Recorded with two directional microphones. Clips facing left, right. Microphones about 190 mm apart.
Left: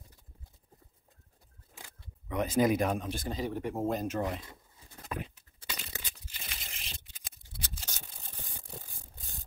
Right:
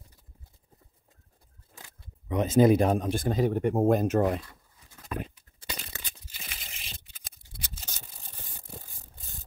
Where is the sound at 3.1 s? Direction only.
55° right (ahead or behind).